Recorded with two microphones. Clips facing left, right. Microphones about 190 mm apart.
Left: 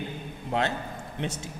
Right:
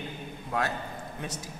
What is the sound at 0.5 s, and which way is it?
Speech, 25° left (ahead or behind).